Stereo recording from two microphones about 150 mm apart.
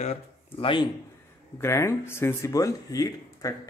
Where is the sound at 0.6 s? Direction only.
35° left (ahead or behind).